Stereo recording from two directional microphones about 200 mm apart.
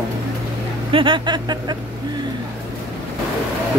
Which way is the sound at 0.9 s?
25° right (ahead or behind).